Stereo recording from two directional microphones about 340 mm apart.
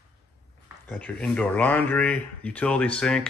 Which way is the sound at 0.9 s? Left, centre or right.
Centre.